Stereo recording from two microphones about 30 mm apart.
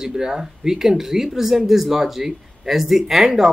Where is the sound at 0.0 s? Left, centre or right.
Right.